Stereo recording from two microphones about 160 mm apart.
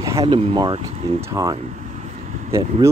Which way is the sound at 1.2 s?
20° right (ahead or behind).